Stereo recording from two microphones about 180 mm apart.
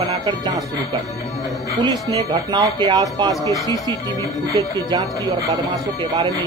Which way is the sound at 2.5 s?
25° right (ahead or behind).